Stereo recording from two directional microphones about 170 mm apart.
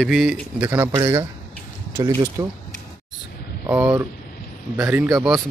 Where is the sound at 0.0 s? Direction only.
5° right (ahead or behind); by 2.4 s 20° right (ahead or behind).